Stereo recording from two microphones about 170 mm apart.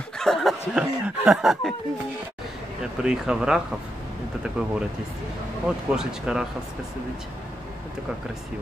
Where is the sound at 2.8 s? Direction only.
5° right (ahead or behind).